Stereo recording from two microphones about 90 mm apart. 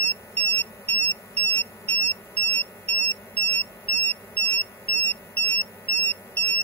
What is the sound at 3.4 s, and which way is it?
Beep, 20° left (ahead or behind).